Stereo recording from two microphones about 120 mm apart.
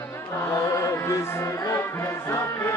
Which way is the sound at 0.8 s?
25° left (ahead or behind).